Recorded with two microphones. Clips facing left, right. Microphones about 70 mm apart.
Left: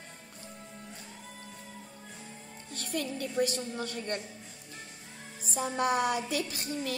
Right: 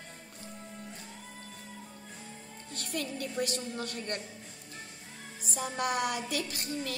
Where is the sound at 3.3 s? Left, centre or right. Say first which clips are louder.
Left 6 dB; centre.